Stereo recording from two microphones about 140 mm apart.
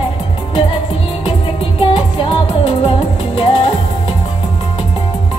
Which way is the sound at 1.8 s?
40° left (ahead or behind).